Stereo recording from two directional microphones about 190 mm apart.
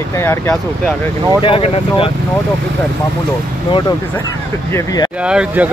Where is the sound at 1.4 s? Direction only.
30° left (ahead or behind).